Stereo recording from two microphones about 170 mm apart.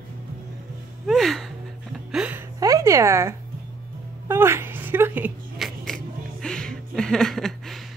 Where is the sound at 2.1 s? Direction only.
5° right (ahead or behind).